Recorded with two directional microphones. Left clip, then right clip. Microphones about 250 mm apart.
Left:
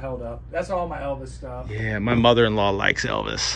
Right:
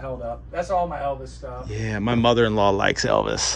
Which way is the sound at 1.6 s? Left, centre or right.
Centre.